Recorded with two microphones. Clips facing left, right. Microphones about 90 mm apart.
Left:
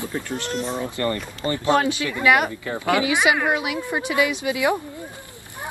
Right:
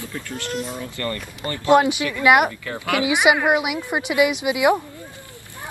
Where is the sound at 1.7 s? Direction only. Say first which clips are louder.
Right 5 dB; 20° right (ahead or behind).